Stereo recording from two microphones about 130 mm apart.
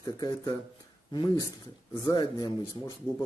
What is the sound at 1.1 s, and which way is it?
Speech, 35° left (ahead or behind).